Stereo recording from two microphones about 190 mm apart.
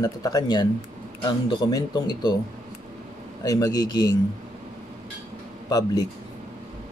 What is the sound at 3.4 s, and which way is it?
Speech, 20° left (ahead or behind).